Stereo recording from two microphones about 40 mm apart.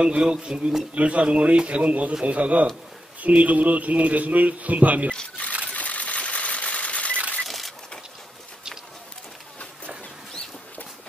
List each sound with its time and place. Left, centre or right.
0.0 s a man's voice: right
0.9 s speech: right
5.7 s coin: left
7.4 s a sound: centre